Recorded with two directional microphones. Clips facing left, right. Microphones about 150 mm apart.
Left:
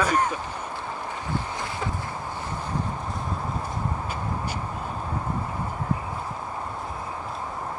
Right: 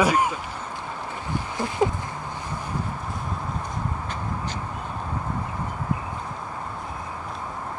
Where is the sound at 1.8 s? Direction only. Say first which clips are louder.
Right 11 dB; 35° right (ahead or behind).